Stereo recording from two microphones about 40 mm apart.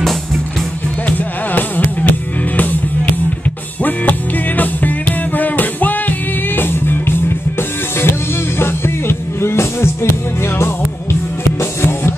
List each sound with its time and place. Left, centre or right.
1.0 s music: left
3.8 s music: left
8.0 s music: left